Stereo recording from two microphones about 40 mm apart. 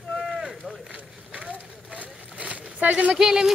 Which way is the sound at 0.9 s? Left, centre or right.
Right.